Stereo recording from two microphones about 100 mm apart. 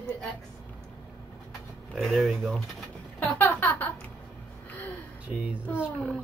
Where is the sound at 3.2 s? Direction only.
20° left (ahead or behind).